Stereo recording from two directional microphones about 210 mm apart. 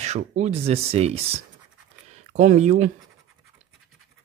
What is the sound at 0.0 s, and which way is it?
Speech, 30° right (ahead or behind).